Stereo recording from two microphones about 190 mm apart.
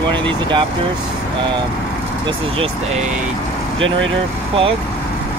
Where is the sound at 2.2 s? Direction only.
30° right (ahead or behind).